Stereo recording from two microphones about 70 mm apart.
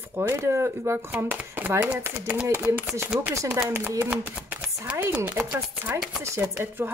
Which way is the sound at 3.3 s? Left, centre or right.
Right.